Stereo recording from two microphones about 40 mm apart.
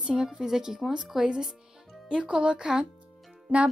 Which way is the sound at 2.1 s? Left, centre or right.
Right.